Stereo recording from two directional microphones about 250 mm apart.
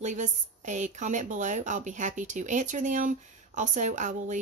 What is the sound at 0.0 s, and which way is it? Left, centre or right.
A woman's voice, right.